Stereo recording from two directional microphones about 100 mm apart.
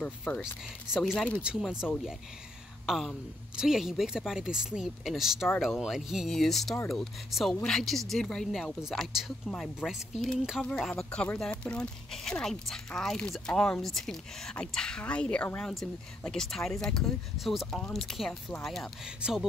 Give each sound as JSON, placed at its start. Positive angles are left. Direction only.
{"t": 0.3, "sound": "speech", "side_deg": 5}
{"t": 1.6, "sound": "speech", "side_deg": -5}
{"t": 2.9, "sound": "speech", "side_deg": -5}
{"t": 19.0, "sound": "speech", "side_deg": -5}